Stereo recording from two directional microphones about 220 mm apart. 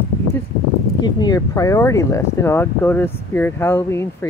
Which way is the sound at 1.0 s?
20° left (ahead or behind).